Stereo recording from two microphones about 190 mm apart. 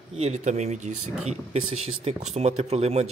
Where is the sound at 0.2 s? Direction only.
35° right (ahead or behind).